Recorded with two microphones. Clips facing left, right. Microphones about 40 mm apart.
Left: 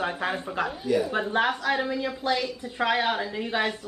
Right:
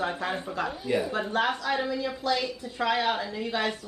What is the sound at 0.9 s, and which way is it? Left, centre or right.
Speech, right.